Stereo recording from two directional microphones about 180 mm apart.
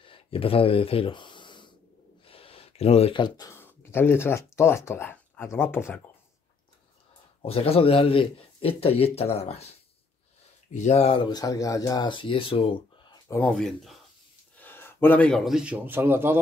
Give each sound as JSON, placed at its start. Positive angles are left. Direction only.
{"t": 0.0, "sound": "snort", "side_deg": 30}
{"t": 2.2, "sound": "speech", "side_deg": 30}
{"t": 7.4, "sound": "a man's voice", "side_deg": 35}
{"t": 13.3, "sound": "a man's voice", "side_deg": 10}